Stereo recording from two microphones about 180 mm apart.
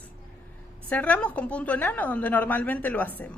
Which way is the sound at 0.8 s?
10° left (ahead or behind).